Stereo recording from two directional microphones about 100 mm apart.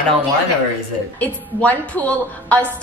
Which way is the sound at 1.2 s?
15° left (ahead or behind).